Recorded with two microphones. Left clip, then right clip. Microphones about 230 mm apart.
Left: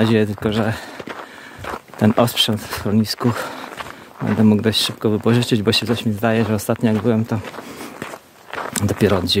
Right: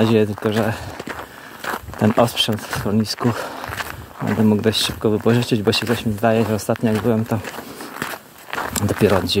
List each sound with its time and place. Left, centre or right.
0.0 s speech: centre
0.9 s skateboard: right
2.0 s speech: centre
3.7 s walk: right
4.4 s speech: centre
8.0 s biting: right
8.7 s speech: centre